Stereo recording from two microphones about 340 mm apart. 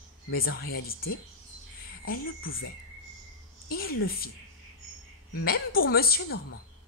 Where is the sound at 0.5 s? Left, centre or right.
Left.